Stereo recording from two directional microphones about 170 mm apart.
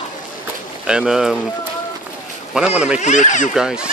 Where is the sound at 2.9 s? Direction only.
45° left (ahead or behind).